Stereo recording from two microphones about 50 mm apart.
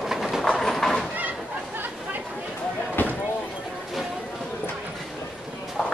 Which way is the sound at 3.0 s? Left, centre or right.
Left.